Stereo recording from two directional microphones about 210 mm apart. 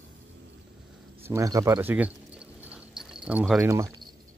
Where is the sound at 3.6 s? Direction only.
15° right (ahead or behind).